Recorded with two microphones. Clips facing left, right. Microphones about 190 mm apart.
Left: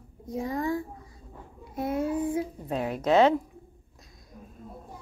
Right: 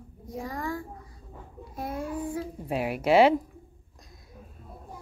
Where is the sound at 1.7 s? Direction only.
20° left (ahead or behind).